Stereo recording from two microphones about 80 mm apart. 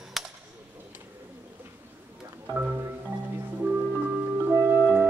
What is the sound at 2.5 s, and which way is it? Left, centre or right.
Marimba, right.